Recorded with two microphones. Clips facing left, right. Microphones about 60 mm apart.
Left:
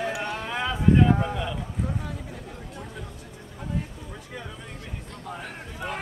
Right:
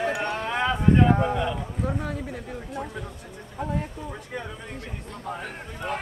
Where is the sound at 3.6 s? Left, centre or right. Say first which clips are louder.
Right 4 dB; right.